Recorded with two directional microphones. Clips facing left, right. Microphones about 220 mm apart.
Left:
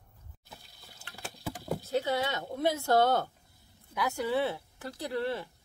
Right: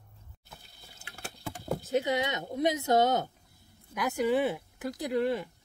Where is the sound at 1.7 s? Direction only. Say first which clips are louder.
Right 2 dB; 20° right (ahead or behind).